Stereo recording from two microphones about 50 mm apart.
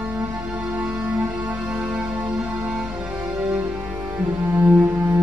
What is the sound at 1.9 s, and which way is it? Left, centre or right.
Music, right.